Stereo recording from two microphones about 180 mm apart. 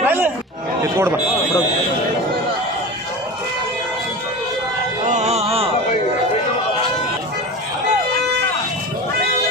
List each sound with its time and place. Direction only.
0.0 s chatter: 10° right (ahead or behind)
0.9 s speech: 10° right (ahead or behind)
5.0 s music: 40° right (ahead or behind)